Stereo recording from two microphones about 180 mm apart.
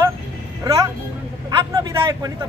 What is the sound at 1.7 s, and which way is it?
Speech, 20° right (ahead or behind).